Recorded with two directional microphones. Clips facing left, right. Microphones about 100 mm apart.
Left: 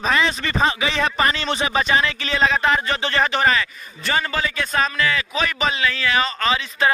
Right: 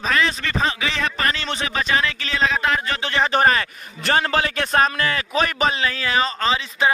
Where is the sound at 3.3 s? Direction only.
40° right (ahead or behind).